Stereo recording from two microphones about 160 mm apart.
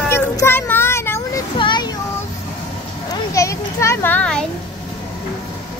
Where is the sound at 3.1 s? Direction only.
20° left (ahead or behind).